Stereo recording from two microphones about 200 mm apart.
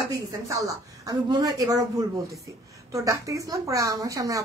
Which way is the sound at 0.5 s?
15° right (ahead or behind).